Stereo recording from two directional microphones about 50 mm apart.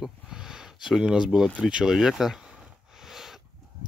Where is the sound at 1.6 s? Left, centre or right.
Centre.